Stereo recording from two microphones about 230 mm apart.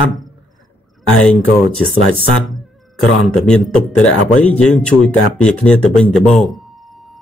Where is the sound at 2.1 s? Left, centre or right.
Right.